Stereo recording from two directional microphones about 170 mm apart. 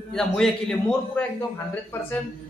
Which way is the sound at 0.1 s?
5° left (ahead or behind).